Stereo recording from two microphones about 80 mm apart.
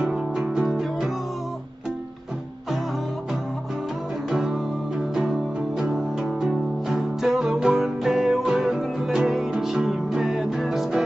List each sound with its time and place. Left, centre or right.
0.0 s music: centre
4.3 s music: centre